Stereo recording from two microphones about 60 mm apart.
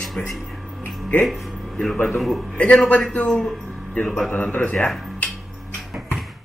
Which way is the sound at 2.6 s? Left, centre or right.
Left.